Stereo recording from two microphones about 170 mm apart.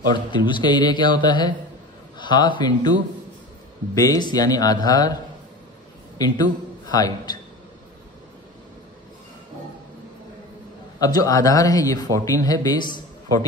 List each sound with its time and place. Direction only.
0.1 s a man's voice: 25° left (ahead or behind)
3.9 s a man's voice: 20° left (ahead or behind)
11.0 s speech: 20° left (ahead or behind)